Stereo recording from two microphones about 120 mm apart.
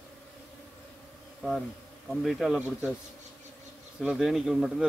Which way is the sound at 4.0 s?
5° right (ahead or behind).